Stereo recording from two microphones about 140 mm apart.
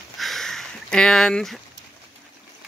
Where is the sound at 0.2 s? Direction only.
Centre (ahead or behind).